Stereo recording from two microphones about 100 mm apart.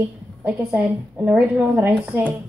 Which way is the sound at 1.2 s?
20° right (ahead or behind).